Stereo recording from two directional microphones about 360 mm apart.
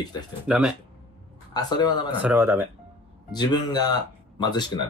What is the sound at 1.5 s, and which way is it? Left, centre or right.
Speech, centre.